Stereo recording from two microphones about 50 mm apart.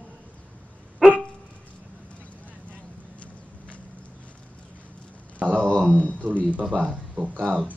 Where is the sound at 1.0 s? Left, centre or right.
Centre.